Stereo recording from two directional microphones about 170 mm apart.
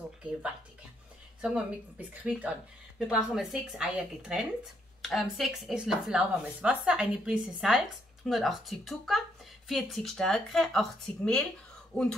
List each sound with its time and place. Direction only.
1.4 s a woman's voice: 5° right (ahead or behind)
11.9 s speech: 20° right (ahead or behind)